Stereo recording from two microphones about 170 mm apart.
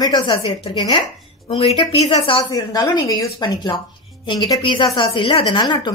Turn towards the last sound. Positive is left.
turn(degrees=25)  # may be behind; listen again after turning